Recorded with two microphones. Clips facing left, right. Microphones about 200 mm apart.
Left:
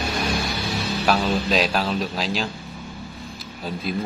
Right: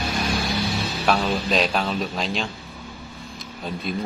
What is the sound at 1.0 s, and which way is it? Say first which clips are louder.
Speech: left 1 dB; centre (ahead or behind).